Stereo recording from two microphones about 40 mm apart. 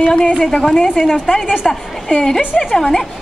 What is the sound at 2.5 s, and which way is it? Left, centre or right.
Speech, centre.